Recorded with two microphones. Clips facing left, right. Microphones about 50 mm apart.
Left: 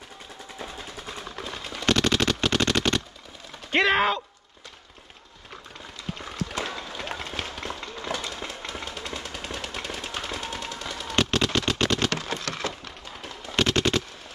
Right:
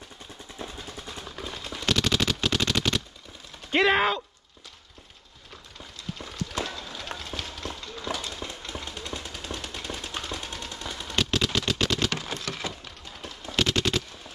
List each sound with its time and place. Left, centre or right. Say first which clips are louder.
1.2 s a sound: left 1 dB; centre
1.5 s machine gun: left 2 dB; centre
1.9 s machine gun: left 3 dB; centre
3.7 s speech: left 1 dB; centre
6.5 s run: left 1 dB; left
9.0 s jackhammer: left 2 dB; left
11.1 s a sound: left 3 dB; centre
13.6 s machine gun: left 2 dB; centre